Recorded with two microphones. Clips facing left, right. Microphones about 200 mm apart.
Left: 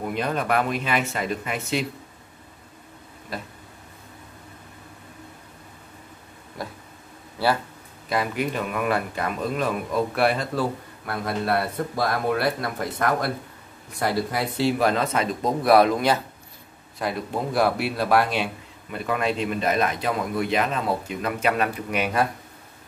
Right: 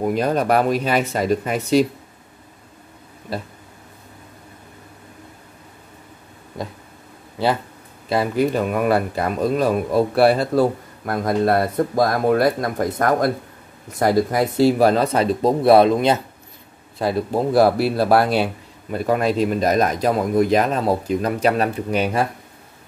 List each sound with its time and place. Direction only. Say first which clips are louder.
0.0 s speech: right 7 dB; 40° right (ahead or behind)
3.3 s speech: right 6 dB; 30° right (ahead or behind)
7.4 s speech: right 3 dB; 20° right (ahead or behind)
8.1 s speech: right 7 dB; 30° right (ahead or behind)
17.0 s speech: right 7 dB; 35° right (ahead or behind)